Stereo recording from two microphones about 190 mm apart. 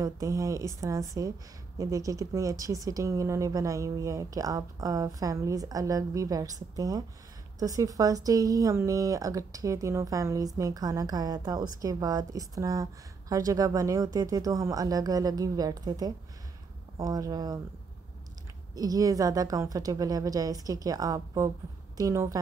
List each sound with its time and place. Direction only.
0.0 s a woman's voice: 15° right (ahead or behind)
18.8 s a woman's voice: 20° right (ahead or behind)